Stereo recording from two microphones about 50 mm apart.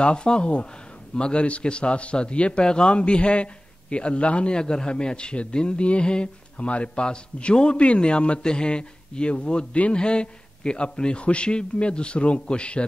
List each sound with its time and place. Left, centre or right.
0.0 s a man's voice: centre